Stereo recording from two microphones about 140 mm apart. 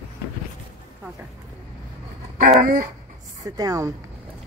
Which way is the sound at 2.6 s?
90° right.